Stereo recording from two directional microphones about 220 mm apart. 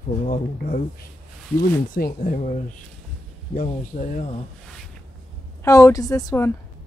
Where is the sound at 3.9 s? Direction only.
25° left (ahead or behind).